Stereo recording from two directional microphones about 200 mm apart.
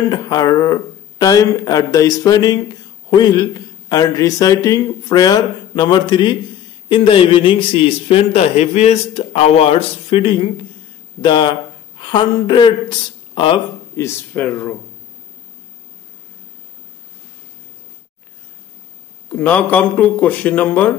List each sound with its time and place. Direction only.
0.1 s a man's voice: 20° left (ahead or behind)
13.9 s speech: 10° left (ahead or behind)
19.4 s speech: 10° left (ahead or behind)